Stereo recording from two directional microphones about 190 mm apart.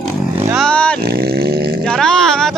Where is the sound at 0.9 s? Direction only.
55° right (ahead or behind).